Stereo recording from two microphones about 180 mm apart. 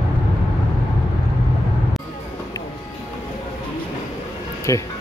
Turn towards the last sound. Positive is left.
turn(degrees=15)  # may be behind; listen again after turning